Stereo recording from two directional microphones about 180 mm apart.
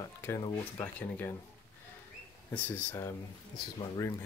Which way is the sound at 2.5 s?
10° left (ahead or behind).